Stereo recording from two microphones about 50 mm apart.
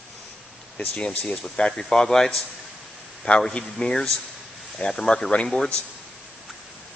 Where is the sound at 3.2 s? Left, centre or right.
Centre.